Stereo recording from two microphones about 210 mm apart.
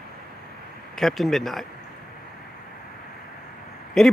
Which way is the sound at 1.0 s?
Centre (ahead or behind).